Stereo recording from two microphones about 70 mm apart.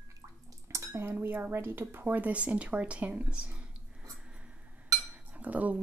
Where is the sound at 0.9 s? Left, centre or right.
Right.